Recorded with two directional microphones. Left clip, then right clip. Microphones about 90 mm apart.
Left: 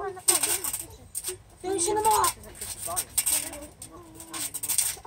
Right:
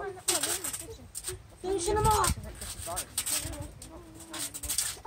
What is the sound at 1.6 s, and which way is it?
Speech, 30° left (ahead or behind).